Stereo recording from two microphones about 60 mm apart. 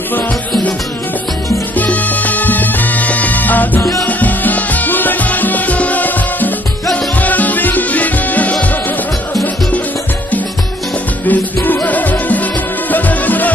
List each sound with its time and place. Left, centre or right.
1.8 s music: left
11.2 s music: left